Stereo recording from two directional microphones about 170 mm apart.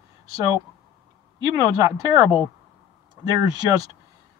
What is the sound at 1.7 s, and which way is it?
Speech, 20° right (ahead or behind).